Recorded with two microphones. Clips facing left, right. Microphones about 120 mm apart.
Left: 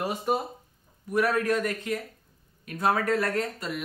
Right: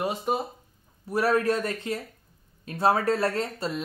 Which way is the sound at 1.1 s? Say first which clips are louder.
Right 1 dB; 30° right (ahead or behind).